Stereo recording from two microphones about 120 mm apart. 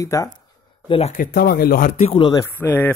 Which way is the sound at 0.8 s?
50° left (ahead or behind).